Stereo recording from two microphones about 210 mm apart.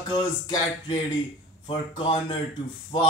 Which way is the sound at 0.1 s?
20° left (ahead or behind).